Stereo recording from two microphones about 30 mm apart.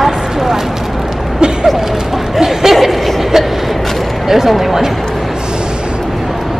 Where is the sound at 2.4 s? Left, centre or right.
Centre.